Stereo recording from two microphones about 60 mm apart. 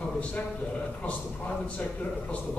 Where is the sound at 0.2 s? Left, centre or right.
Left.